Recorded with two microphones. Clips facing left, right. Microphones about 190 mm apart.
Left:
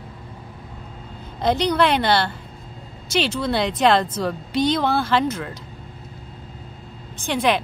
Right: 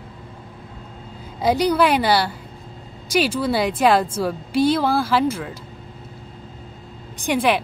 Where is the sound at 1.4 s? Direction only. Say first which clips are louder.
Right 2 dB; 10° right (ahead or behind).